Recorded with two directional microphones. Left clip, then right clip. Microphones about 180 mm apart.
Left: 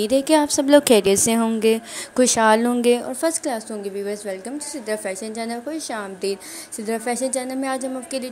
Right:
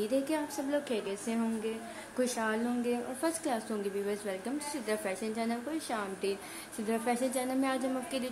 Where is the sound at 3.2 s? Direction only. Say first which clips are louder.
Left 10 dB; 30° left (ahead or behind).